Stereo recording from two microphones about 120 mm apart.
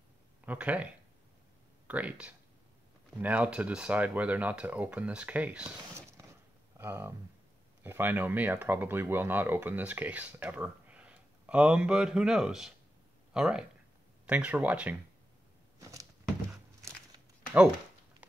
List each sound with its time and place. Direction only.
0.5 s speech: 10° right (ahead or behind)
6.8 s speech: 20° right (ahead or behind)
15.8 s a sound: 25° right (ahead or behind)